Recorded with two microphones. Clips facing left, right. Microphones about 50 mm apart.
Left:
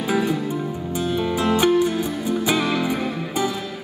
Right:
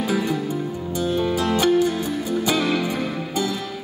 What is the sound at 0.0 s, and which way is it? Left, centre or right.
Music, left.